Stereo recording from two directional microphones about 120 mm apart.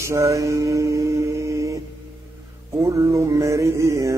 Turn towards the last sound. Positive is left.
turn(degrees=-25)  # may be behind; listen again after turning